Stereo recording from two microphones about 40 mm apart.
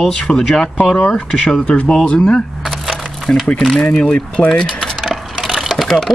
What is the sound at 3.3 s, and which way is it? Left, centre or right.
Speech, left.